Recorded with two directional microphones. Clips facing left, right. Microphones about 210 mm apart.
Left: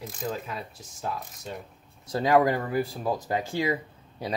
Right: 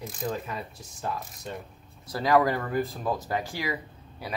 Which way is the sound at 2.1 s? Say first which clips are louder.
Left 1 dB; 25° left (ahead or behind).